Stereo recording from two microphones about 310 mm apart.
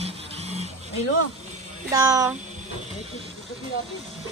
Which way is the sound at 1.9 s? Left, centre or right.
Centre.